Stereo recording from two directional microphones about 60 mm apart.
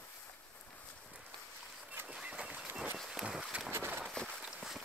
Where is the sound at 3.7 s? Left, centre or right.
Right.